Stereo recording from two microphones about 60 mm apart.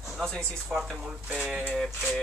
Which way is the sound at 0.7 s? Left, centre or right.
Centre.